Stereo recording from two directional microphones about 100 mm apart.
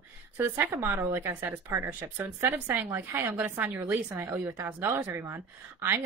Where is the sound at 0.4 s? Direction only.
25° right (ahead or behind).